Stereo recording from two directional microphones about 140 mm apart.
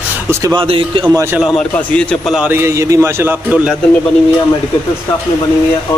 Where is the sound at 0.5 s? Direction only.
40° right (ahead or behind).